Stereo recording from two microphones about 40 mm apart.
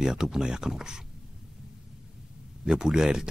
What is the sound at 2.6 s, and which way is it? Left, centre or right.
Speech, centre.